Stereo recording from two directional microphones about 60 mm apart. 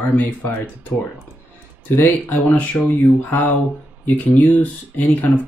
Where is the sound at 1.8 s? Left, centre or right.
Left.